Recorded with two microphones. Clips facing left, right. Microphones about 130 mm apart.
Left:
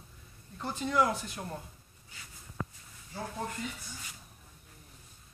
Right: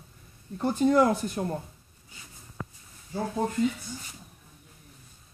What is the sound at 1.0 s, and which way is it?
Speech, 30° right (ahead or behind).